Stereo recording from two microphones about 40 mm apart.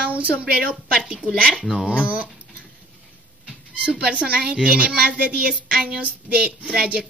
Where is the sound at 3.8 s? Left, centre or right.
Right.